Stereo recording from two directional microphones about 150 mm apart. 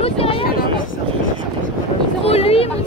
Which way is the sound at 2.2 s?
40° left (ahead or behind).